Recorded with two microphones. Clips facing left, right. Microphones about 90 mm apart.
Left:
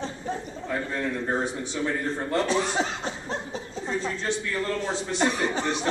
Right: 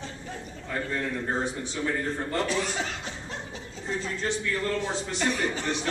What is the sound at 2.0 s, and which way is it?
Speech, 20° left (ahead or behind).